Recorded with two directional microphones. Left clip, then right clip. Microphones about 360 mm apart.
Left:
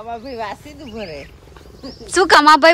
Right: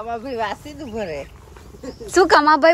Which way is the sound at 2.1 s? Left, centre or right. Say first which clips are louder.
Left 3 dB; centre.